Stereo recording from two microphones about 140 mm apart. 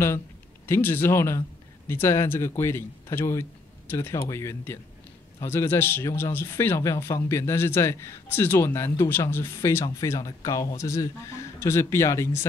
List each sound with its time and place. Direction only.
0.7 s speech: 15° left (ahead or behind)